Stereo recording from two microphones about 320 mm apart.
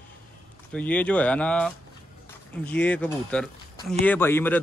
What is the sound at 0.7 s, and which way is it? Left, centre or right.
Speech, centre.